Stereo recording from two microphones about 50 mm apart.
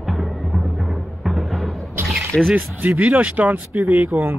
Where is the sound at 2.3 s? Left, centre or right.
Centre.